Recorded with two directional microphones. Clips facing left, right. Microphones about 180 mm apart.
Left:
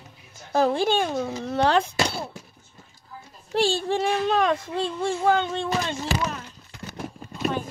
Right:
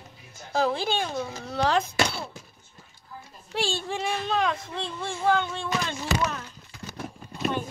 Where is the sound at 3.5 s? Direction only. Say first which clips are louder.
Left 6 dB; 35° left (ahead or behind).